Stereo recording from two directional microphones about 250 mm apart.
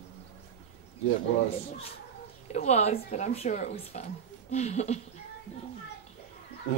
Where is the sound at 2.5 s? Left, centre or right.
Left.